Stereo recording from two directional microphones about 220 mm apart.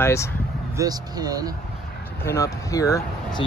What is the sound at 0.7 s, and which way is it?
Speech, 15° right (ahead or behind).